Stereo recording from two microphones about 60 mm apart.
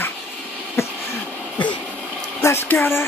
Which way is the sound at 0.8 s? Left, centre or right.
Left.